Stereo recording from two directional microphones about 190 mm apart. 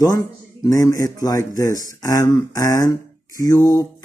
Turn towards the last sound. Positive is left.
turn(degrees=20)  # may be behind; listen again after turning